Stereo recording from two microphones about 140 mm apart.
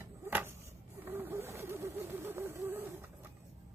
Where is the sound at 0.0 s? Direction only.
15° right (ahead or behind).